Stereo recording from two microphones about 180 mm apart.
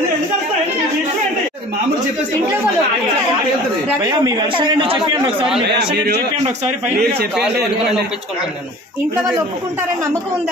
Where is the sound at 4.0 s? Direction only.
20° right (ahead or behind).